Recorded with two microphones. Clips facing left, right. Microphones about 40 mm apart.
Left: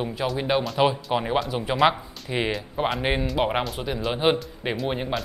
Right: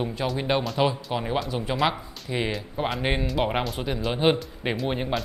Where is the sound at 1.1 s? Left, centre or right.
Centre.